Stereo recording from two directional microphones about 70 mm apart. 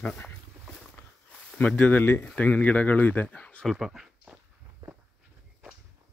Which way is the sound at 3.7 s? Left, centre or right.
Centre.